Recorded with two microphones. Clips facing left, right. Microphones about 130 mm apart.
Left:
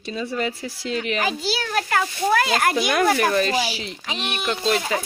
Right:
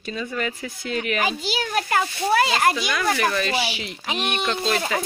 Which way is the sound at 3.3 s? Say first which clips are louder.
Left 3 dB; 40° left (ahead or behind).